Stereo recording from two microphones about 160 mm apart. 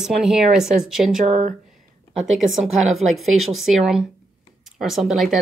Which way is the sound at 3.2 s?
Centre (ahead or behind).